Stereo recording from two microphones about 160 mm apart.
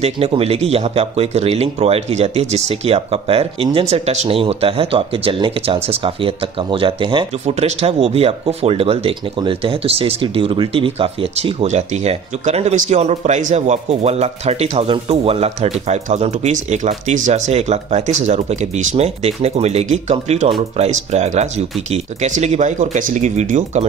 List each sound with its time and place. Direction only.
0.0 s speech: 40° right (ahead or behind)